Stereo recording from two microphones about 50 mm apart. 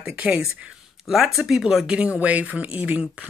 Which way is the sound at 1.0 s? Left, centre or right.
Centre.